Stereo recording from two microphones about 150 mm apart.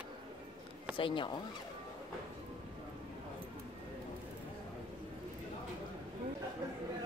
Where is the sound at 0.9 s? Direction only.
35° left (ahead or behind).